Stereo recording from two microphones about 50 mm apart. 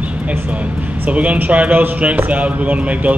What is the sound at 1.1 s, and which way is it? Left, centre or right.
A man's voice, right.